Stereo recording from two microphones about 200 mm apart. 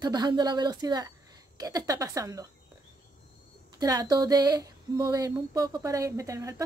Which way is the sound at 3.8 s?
20° right (ahead or behind).